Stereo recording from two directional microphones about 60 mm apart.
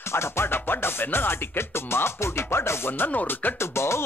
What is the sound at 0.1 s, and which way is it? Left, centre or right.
Speech, left.